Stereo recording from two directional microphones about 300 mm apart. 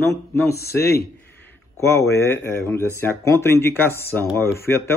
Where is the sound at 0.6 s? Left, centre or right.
Left.